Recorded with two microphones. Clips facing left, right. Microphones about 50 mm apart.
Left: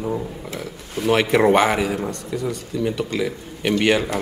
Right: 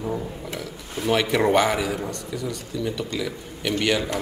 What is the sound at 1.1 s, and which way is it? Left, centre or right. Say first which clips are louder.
Speech: left 4 dB; centre.